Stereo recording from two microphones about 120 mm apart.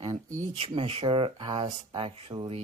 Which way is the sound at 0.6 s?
55° right (ahead or behind).